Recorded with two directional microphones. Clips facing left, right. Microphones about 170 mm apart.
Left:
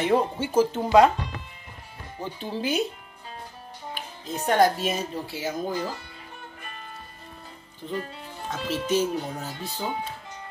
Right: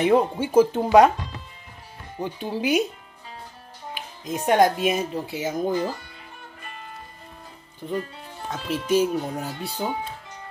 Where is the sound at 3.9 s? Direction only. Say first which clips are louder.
Right 3 dB; 10° right (ahead or behind).